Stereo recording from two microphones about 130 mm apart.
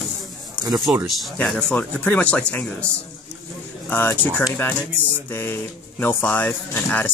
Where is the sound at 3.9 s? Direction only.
15° left (ahead or behind).